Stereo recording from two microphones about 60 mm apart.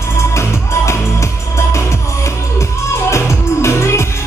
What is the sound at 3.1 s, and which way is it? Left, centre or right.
Music, left.